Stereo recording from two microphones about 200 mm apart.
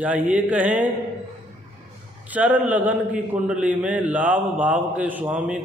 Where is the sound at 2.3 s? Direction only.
10° right (ahead or behind).